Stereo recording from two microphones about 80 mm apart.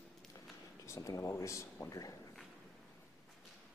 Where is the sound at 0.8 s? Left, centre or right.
Left.